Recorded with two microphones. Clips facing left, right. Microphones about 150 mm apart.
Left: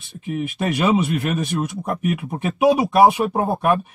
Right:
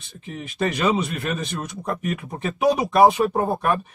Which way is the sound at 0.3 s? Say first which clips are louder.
Left 3 dB; 10° left (ahead or behind).